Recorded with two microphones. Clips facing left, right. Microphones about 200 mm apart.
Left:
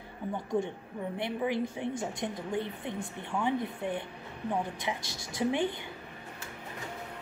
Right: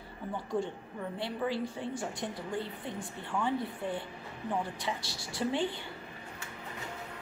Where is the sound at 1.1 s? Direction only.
20° left (ahead or behind).